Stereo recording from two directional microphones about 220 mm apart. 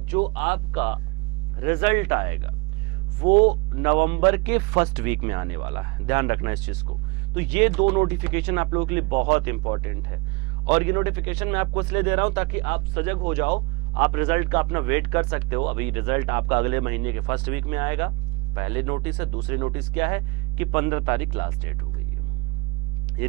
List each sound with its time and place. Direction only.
0.3 s speech: 10° right (ahead or behind)
3.3 s a man's voice: 40° right (ahead or behind)
3.7 s speech: 15° right (ahead or behind)